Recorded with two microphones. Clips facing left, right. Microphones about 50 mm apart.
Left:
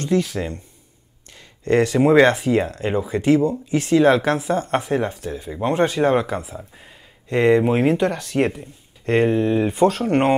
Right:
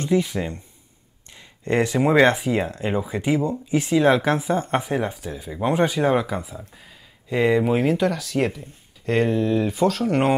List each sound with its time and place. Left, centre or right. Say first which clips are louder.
0.0 s speech: left 1 dB; centre
1.3 s a sound: left 4 dB; centre
2.0 s speech: left 2 dB; centre
4.2 s speech: left 1 dB; centre
4.7 s speech: left 2 dB; centre
5.7 s speech: left 1 dB; centre
5.9 s speech: left 2 dB; centre
6.6 s speech: left 2 dB; centre
7.2 s speech: left 3 dB; centre
8.1 s speech: left 2 dB; left